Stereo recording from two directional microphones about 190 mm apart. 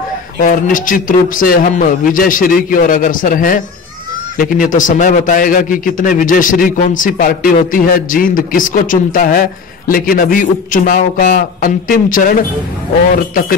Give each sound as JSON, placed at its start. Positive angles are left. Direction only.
{"t": 0.4, "sound": "a man's voice", "side_deg": 45}